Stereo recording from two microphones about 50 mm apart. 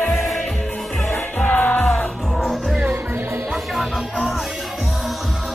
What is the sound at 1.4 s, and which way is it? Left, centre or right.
Music, left.